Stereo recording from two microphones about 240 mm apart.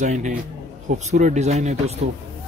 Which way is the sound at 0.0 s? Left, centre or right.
Right.